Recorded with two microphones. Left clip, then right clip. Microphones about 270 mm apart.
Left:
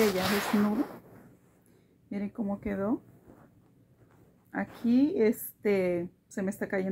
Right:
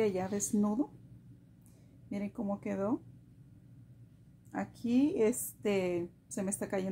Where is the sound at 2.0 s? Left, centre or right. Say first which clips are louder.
Left 2 dB; centre.